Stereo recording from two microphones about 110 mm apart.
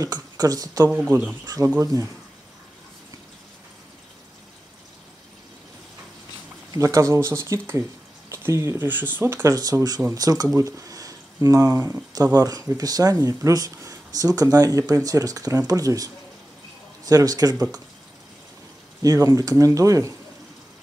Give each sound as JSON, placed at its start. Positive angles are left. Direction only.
{"t": 0.0, "sound": "speech", "side_deg": -35}
{"t": 0.8, "sound": "speech", "side_deg": -20}
{"t": 1.4, "sound": "speech", "side_deg": -35}
{"t": 6.7, "sound": "speech", "side_deg": -30}
{"t": 11.7, "sound": "speech", "side_deg": -20}
{"t": 12.1, "sound": "speech", "side_deg": -35}
{"t": 19.0, "sound": "speech", "side_deg": -30}